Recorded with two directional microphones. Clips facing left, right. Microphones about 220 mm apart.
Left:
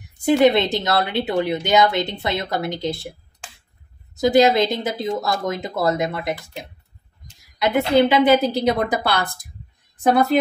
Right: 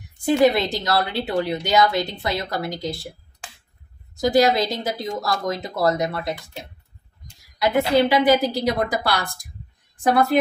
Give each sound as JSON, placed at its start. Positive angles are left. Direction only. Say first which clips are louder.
{"t": 0.4, "sound": "a woman's voice", "louder": "left 1 dB", "side_deg": 25}
{"t": 4.2, "sound": "a woman's voice", "louder": "left 3 dB", "side_deg": 20}
{"t": 7.5, "sound": "a woman's voice", "louder": "left 1 dB", "side_deg": 20}